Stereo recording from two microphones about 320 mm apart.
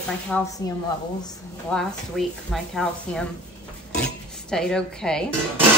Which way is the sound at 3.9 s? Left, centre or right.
Centre.